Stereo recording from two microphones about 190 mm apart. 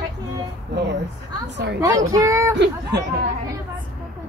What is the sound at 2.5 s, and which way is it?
Speech, 65° right (ahead or behind).